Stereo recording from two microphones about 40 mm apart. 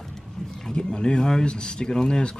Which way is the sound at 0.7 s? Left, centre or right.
Left.